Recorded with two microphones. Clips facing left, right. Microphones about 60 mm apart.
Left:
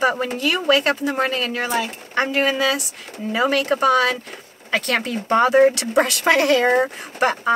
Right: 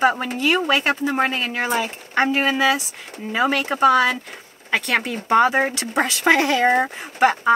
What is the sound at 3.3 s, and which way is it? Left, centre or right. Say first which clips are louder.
Speech: left 1 dB; right.